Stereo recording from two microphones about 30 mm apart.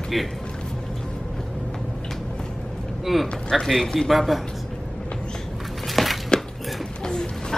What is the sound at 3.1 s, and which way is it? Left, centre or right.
A man's voice, centre.